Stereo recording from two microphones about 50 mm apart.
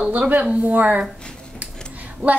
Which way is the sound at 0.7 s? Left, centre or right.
Right.